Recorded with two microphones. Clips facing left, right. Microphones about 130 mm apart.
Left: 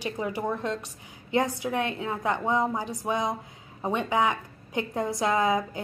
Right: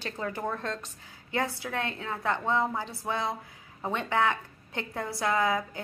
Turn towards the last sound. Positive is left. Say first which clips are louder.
# left 3 dB
turn(degrees=20)  # may be behind; listen again after turning